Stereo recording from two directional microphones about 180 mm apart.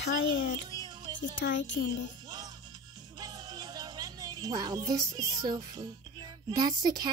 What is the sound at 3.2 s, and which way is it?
Speech, 20° right (ahead or behind).